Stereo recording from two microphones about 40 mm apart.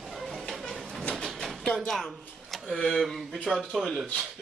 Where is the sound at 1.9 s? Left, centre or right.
Centre.